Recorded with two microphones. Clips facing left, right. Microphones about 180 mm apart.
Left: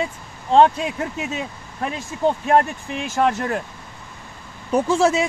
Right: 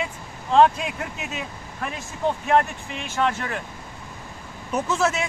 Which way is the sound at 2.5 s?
40° left (ahead or behind).